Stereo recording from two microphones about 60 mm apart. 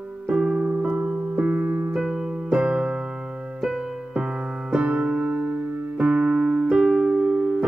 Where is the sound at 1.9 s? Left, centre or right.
Centre.